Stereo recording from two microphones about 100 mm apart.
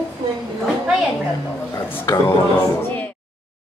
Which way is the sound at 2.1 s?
35° left (ahead or behind).